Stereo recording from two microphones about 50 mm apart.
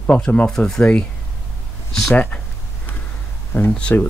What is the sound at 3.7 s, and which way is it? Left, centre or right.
Speech, left.